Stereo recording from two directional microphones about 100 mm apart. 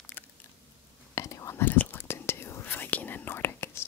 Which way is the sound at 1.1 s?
30° left (ahead or behind).